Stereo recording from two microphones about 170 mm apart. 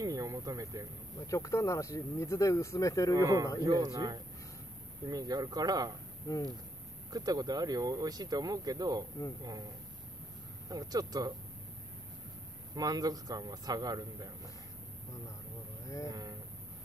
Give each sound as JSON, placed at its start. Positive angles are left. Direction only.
{"t": 0.0, "sound": "a sound", "side_deg": -20}
{"t": 1.2, "sound": "speech", "side_deg": 20}
{"t": 3.2, "sound": "speech", "side_deg": -20}
{"t": 6.3, "sound": "speech", "side_deg": 20}
{"t": 7.1, "sound": "speech", "side_deg": -20}
{"t": 10.7, "sound": "speech", "side_deg": -20}
{"t": 12.7, "sound": "speech", "side_deg": -20}
{"t": 16.1, "sound": "speech", "side_deg": -20}